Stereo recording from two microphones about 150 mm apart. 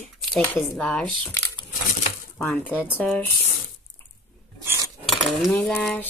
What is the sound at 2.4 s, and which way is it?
Speech, 10° left (ahead or behind).